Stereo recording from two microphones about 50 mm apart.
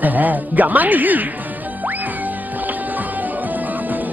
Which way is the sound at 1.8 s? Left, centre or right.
Right.